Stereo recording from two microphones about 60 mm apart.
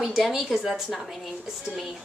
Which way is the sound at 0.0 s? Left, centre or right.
Centre.